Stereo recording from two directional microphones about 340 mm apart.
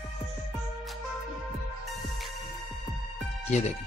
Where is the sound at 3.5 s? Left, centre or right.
Centre.